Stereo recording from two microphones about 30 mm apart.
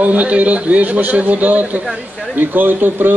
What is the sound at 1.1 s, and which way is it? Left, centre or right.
Speech, right.